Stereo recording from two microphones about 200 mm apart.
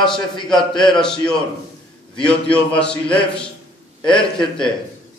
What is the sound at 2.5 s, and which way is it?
Speech, 5° left (ahead or behind).